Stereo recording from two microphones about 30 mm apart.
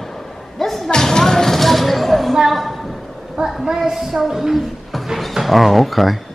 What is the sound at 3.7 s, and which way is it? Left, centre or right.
A woman's voice, centre.